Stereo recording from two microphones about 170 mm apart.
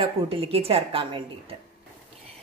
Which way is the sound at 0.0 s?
35° right (ahead or behind).